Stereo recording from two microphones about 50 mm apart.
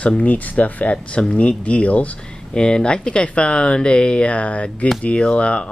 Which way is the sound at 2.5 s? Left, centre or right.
Centre.